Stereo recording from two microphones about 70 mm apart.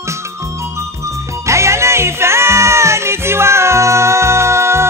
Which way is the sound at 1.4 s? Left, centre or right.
Right.